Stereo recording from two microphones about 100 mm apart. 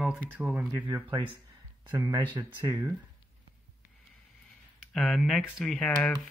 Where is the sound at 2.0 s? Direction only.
45° right (ahead or behind).